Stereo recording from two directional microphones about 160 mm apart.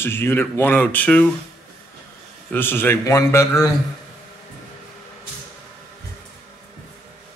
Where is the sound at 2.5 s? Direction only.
15° left (ahead or behind).